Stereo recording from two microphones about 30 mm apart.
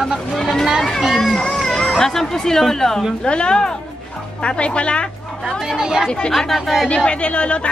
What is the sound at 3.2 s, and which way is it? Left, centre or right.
Speech, left.